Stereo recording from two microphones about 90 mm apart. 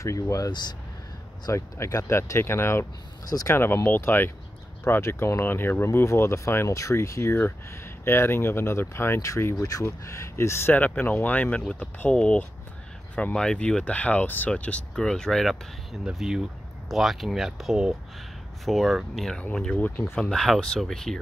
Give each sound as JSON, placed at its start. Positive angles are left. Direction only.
{"t": 0.0, "sound": "speech", "side_deg": 35}
{"t": 0.5, "sound": "speech", "side_deg": 55}
{"t": 1.5, "sound": "speech", "side_deg": 35}
{"t": 3.3, "sound": "speech", "side_deg": 45}
{"t": 3.5, "sound": "speech", "side_deg": 25}